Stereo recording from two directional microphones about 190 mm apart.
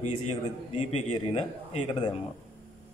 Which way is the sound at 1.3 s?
25° left (ahead or behind).